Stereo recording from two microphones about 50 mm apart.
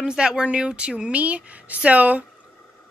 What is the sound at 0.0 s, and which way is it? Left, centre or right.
A woman's voice, centre.